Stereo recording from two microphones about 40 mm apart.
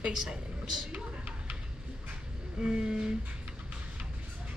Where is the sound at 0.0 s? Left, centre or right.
Right.